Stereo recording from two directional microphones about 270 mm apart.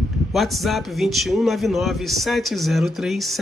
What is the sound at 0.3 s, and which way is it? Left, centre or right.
Speech, centre.